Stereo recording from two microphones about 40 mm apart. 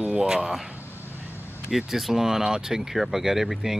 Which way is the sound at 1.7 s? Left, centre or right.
Centre.